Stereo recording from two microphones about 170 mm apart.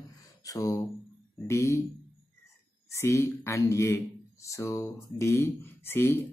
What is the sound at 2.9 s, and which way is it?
Speech, 15° left (ahead or behind).